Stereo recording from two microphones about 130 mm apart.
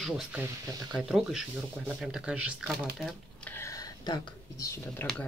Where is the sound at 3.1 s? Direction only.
15° left (ahead or behind); by 4.7 s 30° left (ahead or behind).